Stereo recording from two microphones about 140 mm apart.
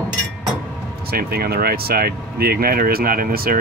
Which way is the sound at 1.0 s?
90° right.